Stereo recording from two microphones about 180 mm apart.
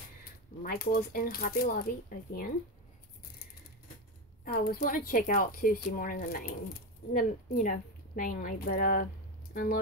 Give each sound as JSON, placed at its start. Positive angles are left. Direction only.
{"t": 0.6, "sound": "speech", "side_deg": 55}
{"t": 4.5, "sound": "speech", "side_deg": 50}